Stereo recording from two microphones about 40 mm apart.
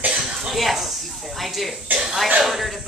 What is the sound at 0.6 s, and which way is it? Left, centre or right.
Speech, centre.